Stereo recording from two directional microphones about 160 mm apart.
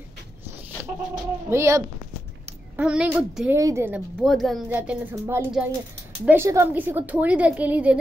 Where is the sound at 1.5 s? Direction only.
15° right (ahead or behind).